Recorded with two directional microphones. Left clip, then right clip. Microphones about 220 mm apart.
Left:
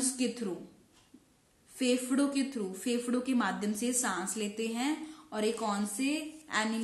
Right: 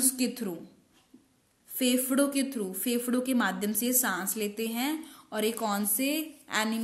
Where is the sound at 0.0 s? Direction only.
40° right (ahead or behind).